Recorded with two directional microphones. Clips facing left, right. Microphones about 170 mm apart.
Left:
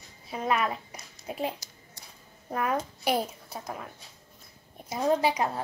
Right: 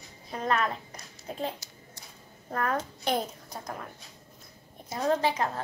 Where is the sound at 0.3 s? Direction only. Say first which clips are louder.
Left 1 dB; 10° left (ahead or behind).